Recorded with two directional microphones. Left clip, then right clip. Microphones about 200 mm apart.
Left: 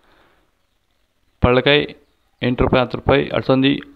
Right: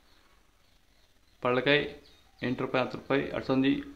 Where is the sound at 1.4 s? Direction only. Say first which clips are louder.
Left 11 dB; 40° left (ahead or behind).